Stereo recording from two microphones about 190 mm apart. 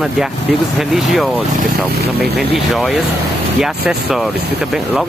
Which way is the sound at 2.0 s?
55° right (ahead or behind).